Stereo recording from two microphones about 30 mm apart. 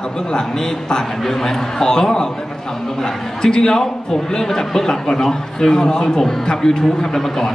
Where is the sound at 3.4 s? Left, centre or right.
Left.